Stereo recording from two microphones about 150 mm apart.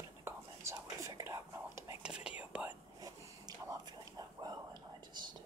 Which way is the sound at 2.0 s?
5° right (ahead or behind).